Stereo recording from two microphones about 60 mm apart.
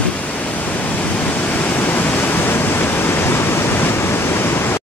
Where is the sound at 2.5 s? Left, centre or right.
Left.